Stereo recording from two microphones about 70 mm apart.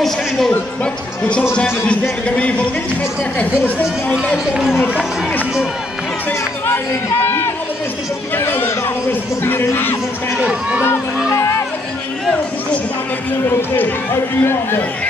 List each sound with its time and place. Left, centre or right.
1.9 s speech: centre
6.7 s speech: left
10.3 s speech: centre
14.4 s speech: left